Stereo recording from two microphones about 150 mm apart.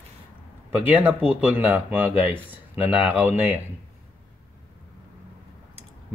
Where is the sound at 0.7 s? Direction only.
10° right (ahead or behind).